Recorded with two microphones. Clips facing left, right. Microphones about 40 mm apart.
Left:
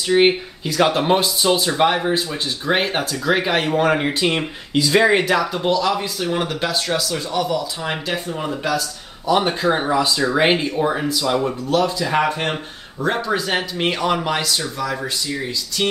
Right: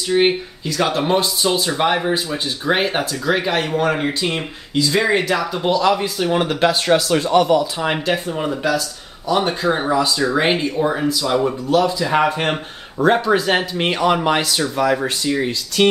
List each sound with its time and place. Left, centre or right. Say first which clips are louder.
0.1 s speech: left 1 dB; centre
5.4 s speech: right 2 dB; centre; by 7.0 s right
7.0 s speech: right 7 dB; right
7.8 s speech: right 4 dB; centre
9.3 s speech: even; centre
15.0 s speech: right 5 dB; right